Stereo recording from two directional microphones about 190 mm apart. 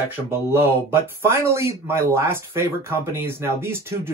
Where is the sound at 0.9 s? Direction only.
15° right (ahead or behind).